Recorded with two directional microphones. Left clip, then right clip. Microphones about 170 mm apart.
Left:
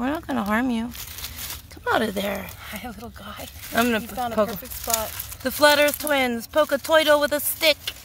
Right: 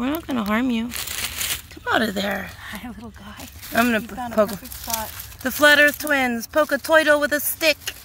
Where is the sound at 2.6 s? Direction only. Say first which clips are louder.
Even; 60° left (ahead or behind).